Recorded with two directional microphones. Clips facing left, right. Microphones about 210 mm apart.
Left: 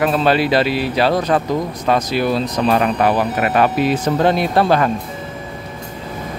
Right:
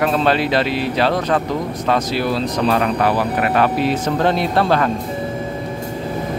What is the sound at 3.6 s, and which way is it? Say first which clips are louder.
Speech: left 3 dB; 15° left (ahead or behind).